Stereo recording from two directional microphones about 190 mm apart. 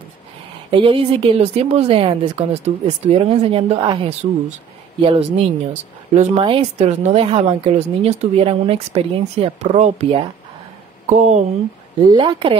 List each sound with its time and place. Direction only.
0.7 s a woman's voice: 25° right (ahead or behind)
12.1 s a woman's voice: 25° right (ahead or behind)